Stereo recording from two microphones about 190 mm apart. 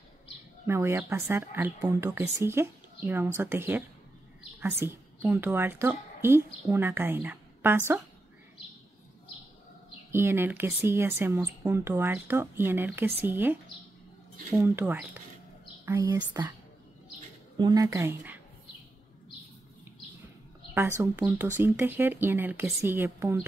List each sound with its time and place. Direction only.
0.7 s a woman's voice: 15° right (ahead or behind)
10.1 s speech: 10° right (ahead or behind)
17.6 s speech: 20° right (ahead or behind)
21.0 s speech: 10° right (ahead or behind)